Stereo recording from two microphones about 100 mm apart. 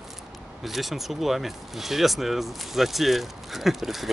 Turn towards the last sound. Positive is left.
turn(degrees=0)  # may be behind; listen again after turning